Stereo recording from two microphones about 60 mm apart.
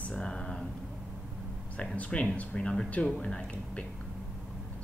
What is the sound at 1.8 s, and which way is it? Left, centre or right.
Speech, left.